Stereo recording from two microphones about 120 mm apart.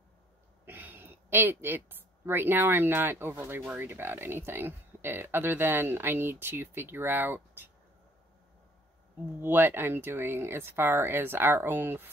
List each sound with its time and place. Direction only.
0.7 s speech: 15° right (ahead or behind)
9.4 s speech: 15° right (ahead or behind)